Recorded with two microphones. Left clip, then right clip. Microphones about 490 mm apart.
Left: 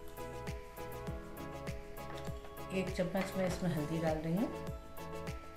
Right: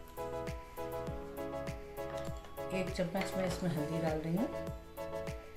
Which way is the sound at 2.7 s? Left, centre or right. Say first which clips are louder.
Even; centre.